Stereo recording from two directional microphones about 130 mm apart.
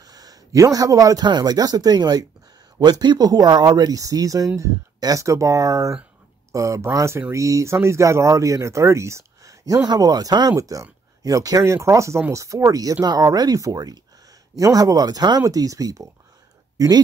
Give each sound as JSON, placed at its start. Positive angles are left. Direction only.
{"t": 0.0, "sound": "a man's voice", "side_deg": -30}